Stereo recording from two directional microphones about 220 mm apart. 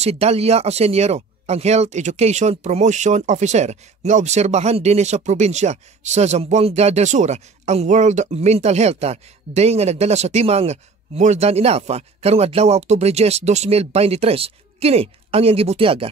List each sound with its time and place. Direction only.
0.0 s speech: 30° right (ahead or behind)